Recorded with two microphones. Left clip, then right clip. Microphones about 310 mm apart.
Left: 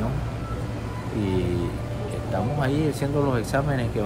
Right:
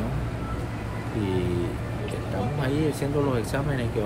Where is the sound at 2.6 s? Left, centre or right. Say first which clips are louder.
Right 1 dB; centre.